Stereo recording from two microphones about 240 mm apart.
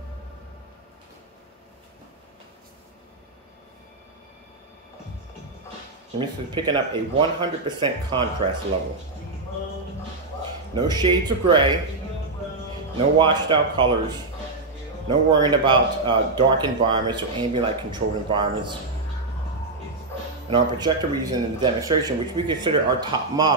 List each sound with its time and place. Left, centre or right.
6.1 s speech: centre
10.7 s speech: centre
12.9 s speech: centre
15.0 s speech: centre
20.4 s speech: centre